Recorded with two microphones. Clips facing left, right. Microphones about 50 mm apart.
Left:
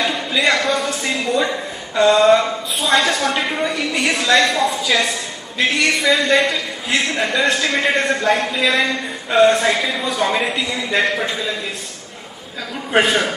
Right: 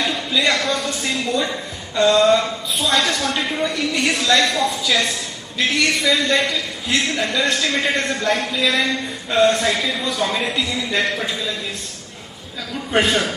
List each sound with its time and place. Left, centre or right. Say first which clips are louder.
0.0 s a man's voice: left 2 dB; centre
12.9 s a man's voice: left 2 dB; centre